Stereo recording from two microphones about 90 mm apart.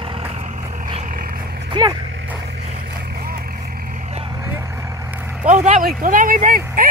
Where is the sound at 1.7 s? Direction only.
55° right (ahead or behind).